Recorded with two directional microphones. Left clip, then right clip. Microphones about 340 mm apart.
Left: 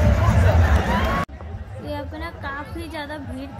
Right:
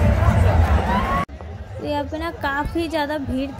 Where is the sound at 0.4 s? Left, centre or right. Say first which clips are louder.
Even; right.